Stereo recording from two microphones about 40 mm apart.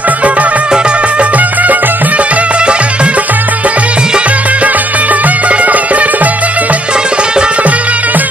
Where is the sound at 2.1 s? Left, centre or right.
Right.